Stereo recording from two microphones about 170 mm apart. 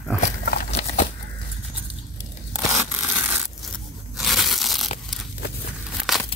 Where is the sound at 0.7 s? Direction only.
40° left (ahead or behind).